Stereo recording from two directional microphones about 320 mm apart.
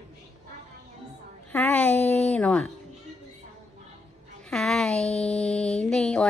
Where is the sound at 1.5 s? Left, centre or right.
Centre.